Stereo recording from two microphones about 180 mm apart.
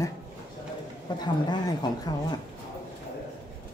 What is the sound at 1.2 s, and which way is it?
Speech, 25° left (ahead or behind).